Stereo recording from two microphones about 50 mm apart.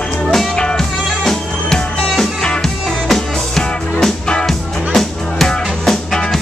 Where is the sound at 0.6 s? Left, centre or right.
Centre.